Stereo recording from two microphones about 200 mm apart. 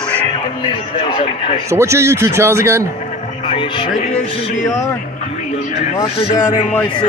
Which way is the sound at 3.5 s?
25° left (ahead or behind).